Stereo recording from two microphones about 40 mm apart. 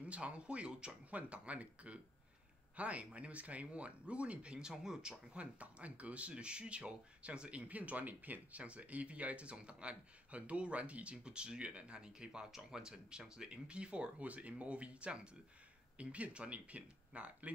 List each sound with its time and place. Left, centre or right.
0.0 s speech: right
5.3 s speech: right
7.5 s speech: right